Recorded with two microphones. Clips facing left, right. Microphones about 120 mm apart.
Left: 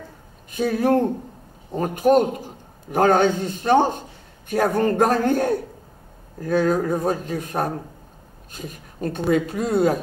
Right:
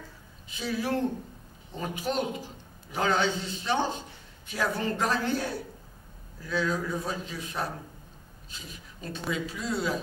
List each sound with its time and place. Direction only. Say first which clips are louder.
0.5 s a man's voice: left 11 dB; 50° left (ahead or behind)